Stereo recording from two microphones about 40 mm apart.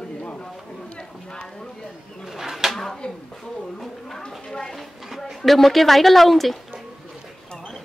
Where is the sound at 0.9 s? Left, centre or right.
Left.